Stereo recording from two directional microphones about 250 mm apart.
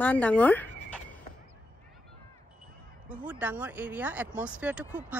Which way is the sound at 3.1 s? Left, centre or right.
Centre.